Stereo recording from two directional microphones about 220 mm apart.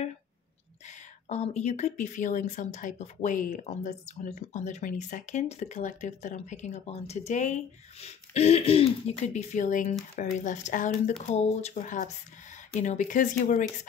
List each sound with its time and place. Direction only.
0.8 s speech: 30° left (ahead or behind)